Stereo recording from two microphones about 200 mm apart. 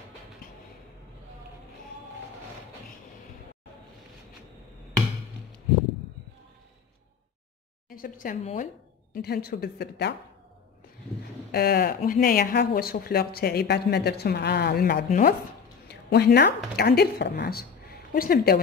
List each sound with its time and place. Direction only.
7.9 s a woman's voice: 45° left (ahead or behind)
11.5 s speech: 50° left (ahead or behind)
15.9 s a woman's voice: 55° left (ahead or behind)